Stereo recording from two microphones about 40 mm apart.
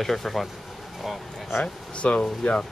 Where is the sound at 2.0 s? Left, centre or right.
Left.